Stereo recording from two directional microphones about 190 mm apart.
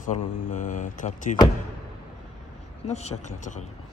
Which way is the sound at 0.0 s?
40° left (ahead or behind).